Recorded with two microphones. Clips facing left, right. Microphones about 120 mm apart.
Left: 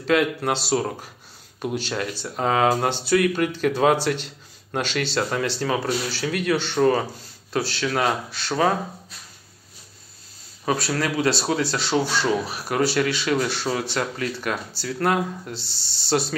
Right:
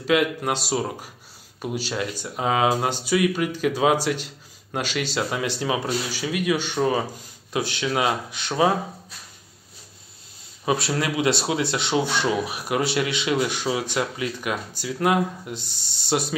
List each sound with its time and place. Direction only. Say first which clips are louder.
0.0 s speech: left 1 dB; 10° right (ahead or behind)
10.6 s speech: even; 20° right (ahead or behind)